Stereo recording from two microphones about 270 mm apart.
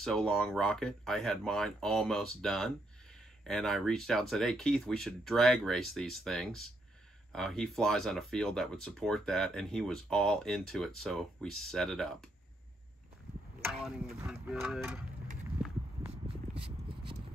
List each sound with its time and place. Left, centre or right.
0.0 s speech: centre
13.7 s speech: centre
15.6 s walk: centre
16.1 s a sound: right